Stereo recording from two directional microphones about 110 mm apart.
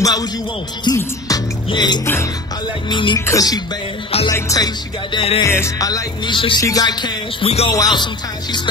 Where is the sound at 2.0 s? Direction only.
25° left (ahead or behind).